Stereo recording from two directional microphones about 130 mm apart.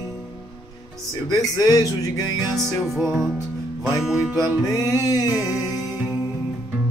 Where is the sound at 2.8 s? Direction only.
Centre (ahead or behind).